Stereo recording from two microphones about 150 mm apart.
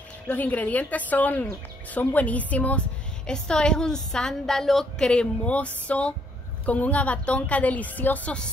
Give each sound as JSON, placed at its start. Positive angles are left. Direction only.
{"t": 0.3, "sound": "a woman's voice", "side_deg": 10}